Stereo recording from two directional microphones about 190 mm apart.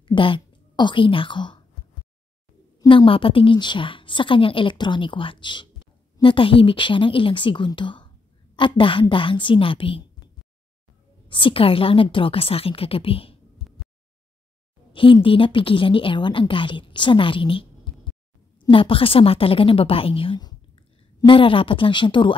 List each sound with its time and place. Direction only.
0.0 s a woman's voice: 25° left (ahead or behind)
2.8 s a woman's voice: 25° left (ahead or behind)
11.2 s a woman's voice: 25° left (ahead or behind)
14.9 s a woman's voice: 25° left (ahead or behind)